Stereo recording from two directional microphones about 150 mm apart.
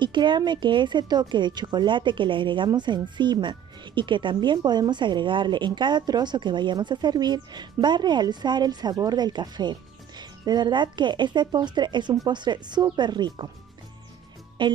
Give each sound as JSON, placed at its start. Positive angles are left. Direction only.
{"t": 0.0, "sound": "speech", "side_deg": -30}
{"t": 14.6, "sound": "speech", "side_deg": -35}